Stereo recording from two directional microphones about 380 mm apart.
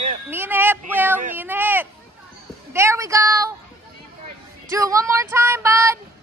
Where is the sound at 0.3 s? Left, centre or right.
Centre.